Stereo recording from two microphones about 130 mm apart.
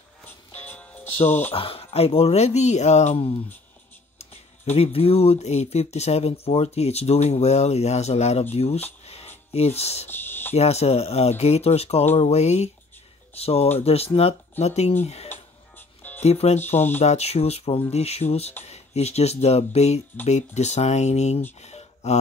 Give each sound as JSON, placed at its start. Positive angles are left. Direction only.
{"t": 0.2, "sound": "music", "side_deg": 15}
{"t": 1.2, "sound": "speech", "side_deg": 15}
{"t": 1.5, "sound": "speech", "side_deg": 45}
{"t": 4.7, "sound": "speech", "side_deg": 50}
{"t": 9.0, "sound": "music", "side_deg": 55}
{"t": 9.5, "sound": "speech", "side_deg": 55}
{"t": 10.0, "sound": "cricket", "side_deg": 15}
{"t": 10.5, "sound": "speech", "side_deg": 55}
{"t": 16.2, "sound": "speech", "side_deg": 55}
{"t": 21.5, "sound": "a sound", "side_deg": 55}